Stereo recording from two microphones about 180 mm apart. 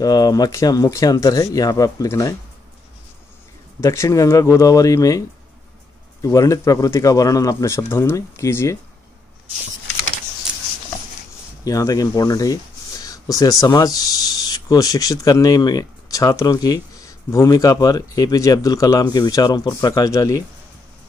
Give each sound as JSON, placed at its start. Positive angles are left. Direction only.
{"t": 0.0, "sound": "speech", "side_deg": 20}
{"t": 3.8, "sound": "speech", "side_deg": 15}
{"t": 6.2, "sound": "speech", "side_deg": 20}
{"t": 11.6, "sound": "speech", "side_deg": 20}